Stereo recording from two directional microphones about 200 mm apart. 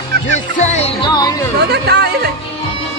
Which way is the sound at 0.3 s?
35° left (ahead or behind).